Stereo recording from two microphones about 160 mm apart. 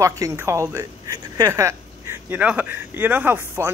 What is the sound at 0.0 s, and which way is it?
Speech, 20° right (ahead or behind).